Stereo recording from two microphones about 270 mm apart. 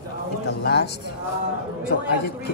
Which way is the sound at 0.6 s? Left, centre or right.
Left.